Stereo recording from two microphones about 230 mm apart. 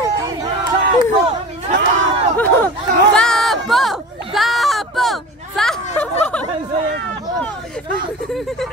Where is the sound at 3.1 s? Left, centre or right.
Centre.